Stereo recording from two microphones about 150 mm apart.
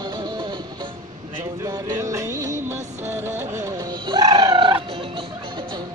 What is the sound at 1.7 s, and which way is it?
Music, 25° right (ahead or behind).